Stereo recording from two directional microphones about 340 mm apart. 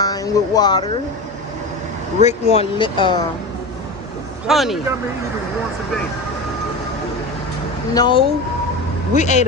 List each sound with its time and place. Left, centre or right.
0.0 s speech: centre
2.2 s speech: centre
4.5 s speech: centre
7.9 s speech: centre